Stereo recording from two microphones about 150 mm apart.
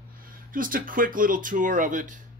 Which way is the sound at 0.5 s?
65° right (ahead or behind).